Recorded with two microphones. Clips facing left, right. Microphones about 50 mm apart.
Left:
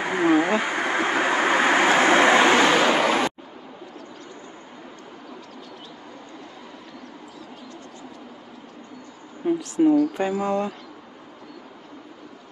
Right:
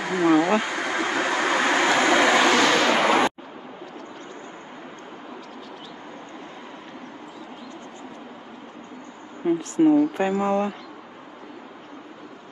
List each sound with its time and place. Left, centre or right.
0.0 s vehicle: left
9.5 s speech: right